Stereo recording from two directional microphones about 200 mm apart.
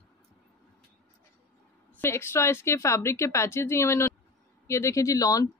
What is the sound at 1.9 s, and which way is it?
Speech, 10° left (ahead or behind).